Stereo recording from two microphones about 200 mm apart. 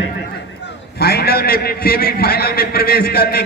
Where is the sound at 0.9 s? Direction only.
50° left (ahead or behind).